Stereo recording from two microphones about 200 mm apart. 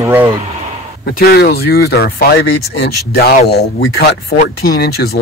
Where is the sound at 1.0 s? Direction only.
50° left (ahead or behind).